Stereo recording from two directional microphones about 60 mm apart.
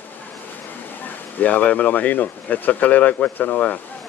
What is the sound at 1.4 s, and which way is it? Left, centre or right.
Speech, left.